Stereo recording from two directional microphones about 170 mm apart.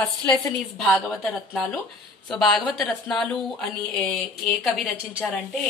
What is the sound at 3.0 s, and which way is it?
A woman's voice, 5° left (ahead or behind).